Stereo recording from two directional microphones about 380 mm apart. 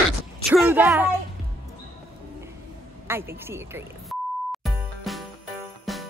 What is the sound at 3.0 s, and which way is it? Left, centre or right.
Speech, centre.